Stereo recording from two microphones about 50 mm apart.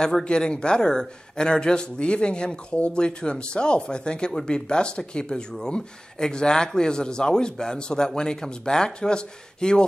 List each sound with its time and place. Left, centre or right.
0.0 s a man's voice: centre